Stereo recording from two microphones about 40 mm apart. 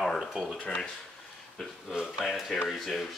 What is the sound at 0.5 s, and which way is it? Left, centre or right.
Speech, left.